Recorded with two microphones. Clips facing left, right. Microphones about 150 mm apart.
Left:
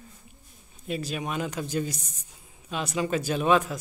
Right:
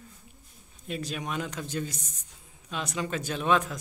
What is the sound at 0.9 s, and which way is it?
Speech, 5° left (ahead or behind).